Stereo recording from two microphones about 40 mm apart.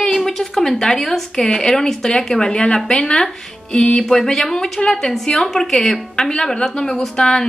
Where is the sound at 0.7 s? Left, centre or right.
Centre.